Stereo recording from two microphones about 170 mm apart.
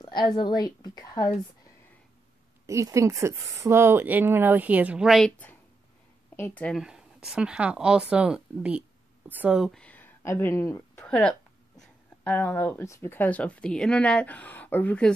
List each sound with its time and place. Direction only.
0.0 s a woman's voice: 25° left (ahead or behind)
2.6 s speech: 15° right (ahead or behind); by 6.8 s 10° left (ahead or behind)
6.8 s speech: 5° right (ahead or behind)